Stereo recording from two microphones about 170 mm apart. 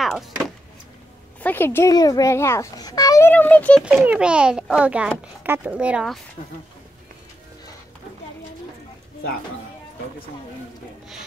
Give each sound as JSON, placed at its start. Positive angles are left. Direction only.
{"t": 0.0, "sound": "vehicle", "side_deg": 0}
{"t": 1.4, "sound": "a child's voice", "side_deg": 10}
{"t": 3.8, "sound": "a child's voice", "side_deg": -5}